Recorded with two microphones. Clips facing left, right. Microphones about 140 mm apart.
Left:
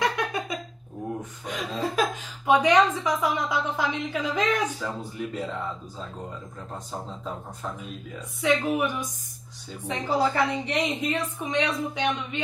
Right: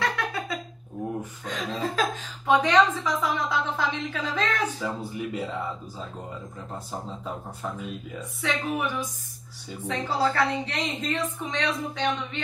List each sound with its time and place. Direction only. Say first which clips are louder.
0.0 s a sound: left 2 dB; 15° left (ahead or behind)
1.4 s a woman's voice: left 1 dB; 10° left (ahead or behind)
4.7 s speech: right 1 dB; 10° right (ahead or behind)
8.4 s a woman's voice: left 5 dB; 15° left (ahead or behind)